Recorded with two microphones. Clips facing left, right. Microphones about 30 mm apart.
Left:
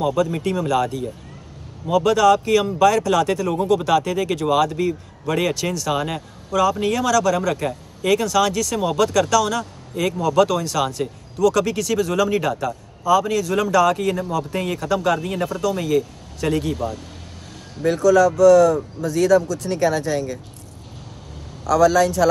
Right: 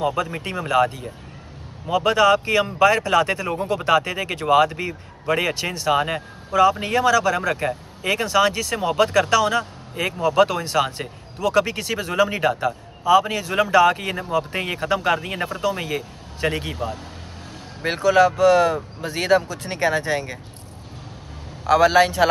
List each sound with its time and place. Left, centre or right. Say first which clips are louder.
0.0 s a man's voice: left 3 dB; right
17.8 s a man's voice: left 2 dB; right
21.6 s speech: even; right